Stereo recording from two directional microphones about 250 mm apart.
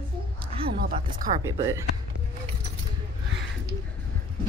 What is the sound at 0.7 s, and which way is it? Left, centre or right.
Speech, right.